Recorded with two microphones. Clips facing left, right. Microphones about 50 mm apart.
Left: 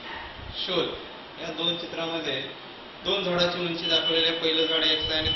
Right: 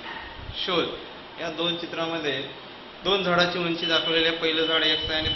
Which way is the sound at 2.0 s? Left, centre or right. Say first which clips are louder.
Right 3 dB; right.